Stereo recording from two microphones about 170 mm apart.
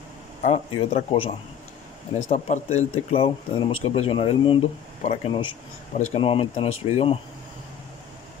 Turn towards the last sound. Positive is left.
turn(degrees=35)  # may be behind; listen again after turning